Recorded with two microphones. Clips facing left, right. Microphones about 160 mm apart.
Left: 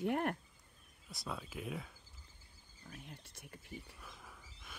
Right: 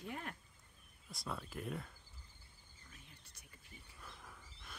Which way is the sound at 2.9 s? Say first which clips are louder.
Left 12 dB; 65° left (ahead or behind).